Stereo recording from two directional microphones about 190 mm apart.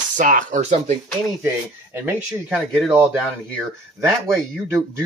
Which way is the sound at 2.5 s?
Centre (ahead or behind).